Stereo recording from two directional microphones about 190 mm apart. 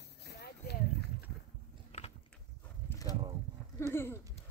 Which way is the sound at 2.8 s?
20° left (ahead or behind).